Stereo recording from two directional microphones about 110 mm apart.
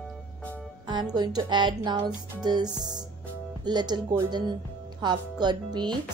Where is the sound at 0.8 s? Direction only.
40° right (ahead or behind).